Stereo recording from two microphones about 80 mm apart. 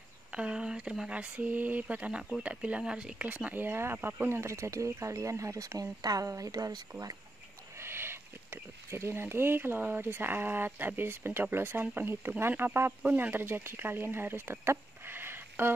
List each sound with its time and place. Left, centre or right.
0.3 s speech: centre; by 6.8 s right
7.8 s speech: right